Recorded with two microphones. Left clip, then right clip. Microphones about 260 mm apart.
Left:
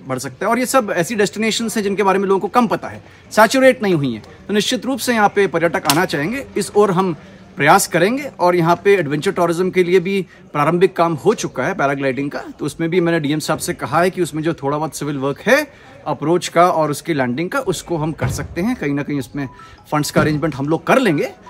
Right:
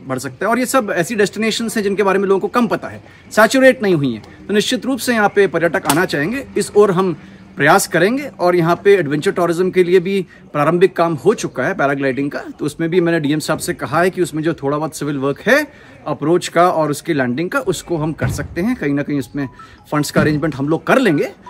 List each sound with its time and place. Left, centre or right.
0.1 s speech: centre